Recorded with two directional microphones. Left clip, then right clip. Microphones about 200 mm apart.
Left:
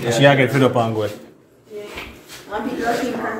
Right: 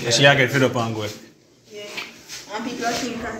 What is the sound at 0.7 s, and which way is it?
Speech, 15° left (ahead or behind).